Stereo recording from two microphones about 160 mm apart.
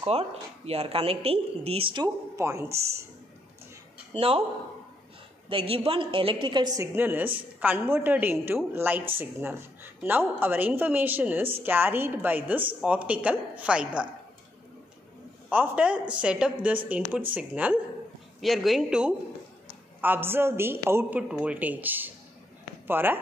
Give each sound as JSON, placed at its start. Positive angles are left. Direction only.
{"t": 0.0, "sound": "speech", "side_deg": -40}
{"t": 2.3, "sound": "a woman's voice", "side_deg": -15}
{"t": 4.1, "sound": "speech", "side_deg": -35}
{"t": 5.5, "sound": "a woman's voice", "side_deg": -35}
{"t": 15.5, "sound": "a woman's voice", "side_deg": -10}